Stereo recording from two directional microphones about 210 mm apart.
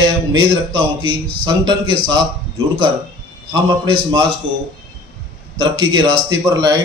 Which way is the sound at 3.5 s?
20° right (ahead or behind).